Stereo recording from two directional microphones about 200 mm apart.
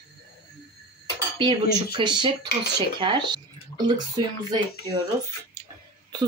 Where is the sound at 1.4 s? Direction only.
25° right (ahead or behind).